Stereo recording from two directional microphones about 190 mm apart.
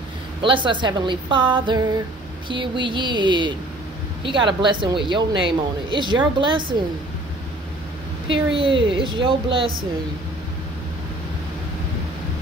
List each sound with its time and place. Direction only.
0.4 s a woman's voice: 25° right (ahead or behind)
8.3 s a woman's voice: 25° right (ahead or behind)